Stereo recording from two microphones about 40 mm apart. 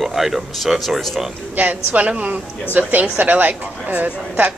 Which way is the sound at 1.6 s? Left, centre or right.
Right.